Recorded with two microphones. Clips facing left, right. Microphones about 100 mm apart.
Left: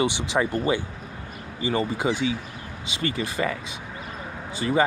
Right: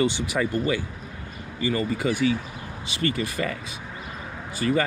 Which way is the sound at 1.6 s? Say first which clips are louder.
Even; 25° left (ahead or behind).